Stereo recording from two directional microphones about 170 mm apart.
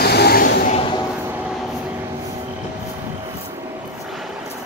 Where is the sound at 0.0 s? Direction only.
70° left (ahead or behind).